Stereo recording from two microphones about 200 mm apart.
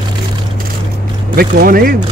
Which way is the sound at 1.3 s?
50° right (ahead or behind).